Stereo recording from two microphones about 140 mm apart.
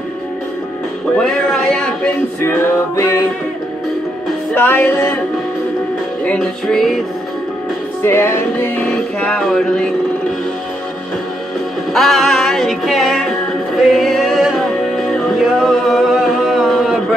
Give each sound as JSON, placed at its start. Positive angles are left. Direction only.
{"t": 1.1, "sound": "a sound", "side_deg": 5}
{"t": 2.4, "sound": "music", "side_deg": 20}
{"t": 4.6, "sound": "music", "side_deg": 15}
{"t": 6.2, "sound": "music", "side_deg": 5}
{"t": 8.0, "sound": "music", "side_deg": 20}
{"t": 8.9, "sound": "music", "side_deg": 5}
{"t": 11.9, "sound": "music", "side_deg": 0}